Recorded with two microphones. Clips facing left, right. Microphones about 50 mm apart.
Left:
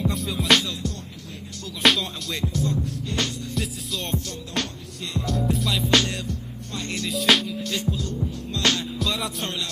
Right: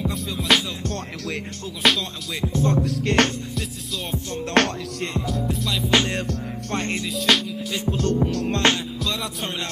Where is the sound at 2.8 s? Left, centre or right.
Right.